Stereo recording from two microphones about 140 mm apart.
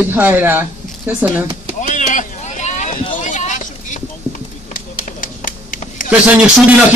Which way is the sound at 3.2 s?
65° left (ahead or behind).